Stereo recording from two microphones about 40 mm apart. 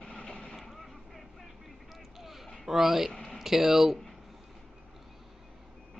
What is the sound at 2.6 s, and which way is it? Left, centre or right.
Speech, centre.